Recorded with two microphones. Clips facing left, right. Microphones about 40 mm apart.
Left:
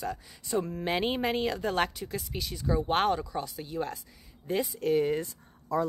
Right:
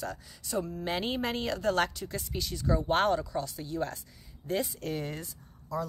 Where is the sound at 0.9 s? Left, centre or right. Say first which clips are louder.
Left 4 dB; centre.